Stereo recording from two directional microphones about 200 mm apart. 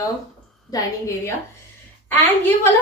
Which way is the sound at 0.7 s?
15° left (ahead or behind).